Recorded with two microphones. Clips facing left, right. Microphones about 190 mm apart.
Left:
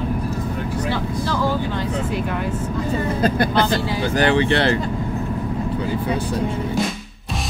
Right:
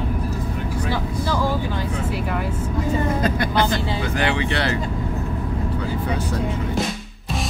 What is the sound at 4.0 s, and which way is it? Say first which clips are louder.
Speech: left 5 dB; 40° left (ahead or behind).